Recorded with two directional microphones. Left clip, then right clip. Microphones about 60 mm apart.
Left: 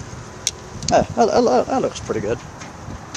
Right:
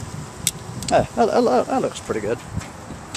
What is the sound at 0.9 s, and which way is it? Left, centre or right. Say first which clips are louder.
Speech: left 2 dB; left.